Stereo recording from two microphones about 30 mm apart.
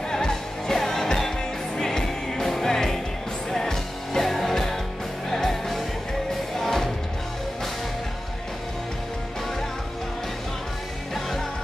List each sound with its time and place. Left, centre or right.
0.1 s music: centre
11.1 s music: centre